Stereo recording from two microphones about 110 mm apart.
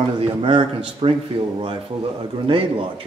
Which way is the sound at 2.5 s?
50° right (ahead or behind).